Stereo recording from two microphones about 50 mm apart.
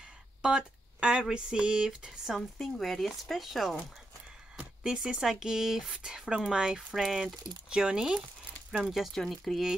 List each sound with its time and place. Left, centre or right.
0.4 s a sound: centre
1.3 s speech: centre
2.6 s speech: centre
8.8 s speech: centre